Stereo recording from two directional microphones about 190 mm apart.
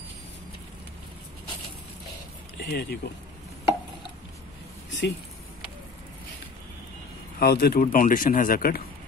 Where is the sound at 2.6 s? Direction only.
60° left (ahead or behind).